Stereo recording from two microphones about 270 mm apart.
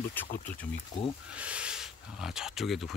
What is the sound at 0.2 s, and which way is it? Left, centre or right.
Speech, centre.